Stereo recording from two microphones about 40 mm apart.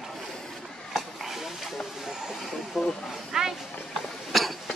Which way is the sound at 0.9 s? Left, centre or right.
Centre.